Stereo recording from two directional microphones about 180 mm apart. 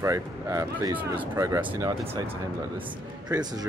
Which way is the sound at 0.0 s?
15° right (ahead or behind).